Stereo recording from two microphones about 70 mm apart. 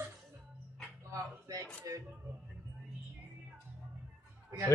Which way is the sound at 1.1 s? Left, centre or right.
Right.